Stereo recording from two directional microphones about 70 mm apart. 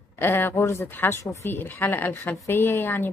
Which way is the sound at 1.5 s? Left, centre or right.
Left.